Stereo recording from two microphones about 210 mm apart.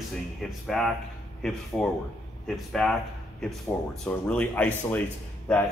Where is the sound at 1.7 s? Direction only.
5° left (ahead or behind).